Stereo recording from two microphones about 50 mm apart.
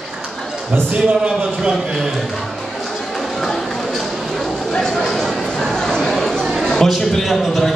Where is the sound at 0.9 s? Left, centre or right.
Centre.